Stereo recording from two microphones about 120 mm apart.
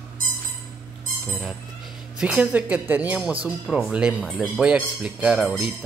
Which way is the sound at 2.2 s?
10° right (ahead or behind).